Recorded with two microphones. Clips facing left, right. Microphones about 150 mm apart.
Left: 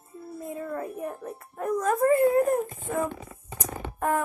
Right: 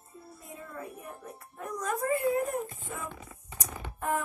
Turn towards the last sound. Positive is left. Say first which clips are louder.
# left 5 dB
turn(degrees=55)  # may be behind; listen again after turning